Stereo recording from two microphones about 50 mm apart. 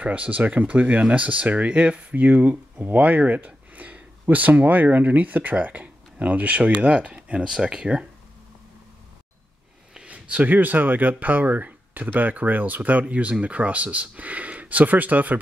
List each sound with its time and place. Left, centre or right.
0.0 s speech: right
10.0 s speech: right